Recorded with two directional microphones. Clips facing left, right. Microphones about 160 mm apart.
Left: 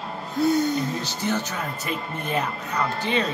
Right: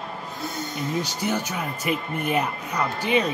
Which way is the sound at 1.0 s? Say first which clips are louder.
Even; 10° right (ahead or behind).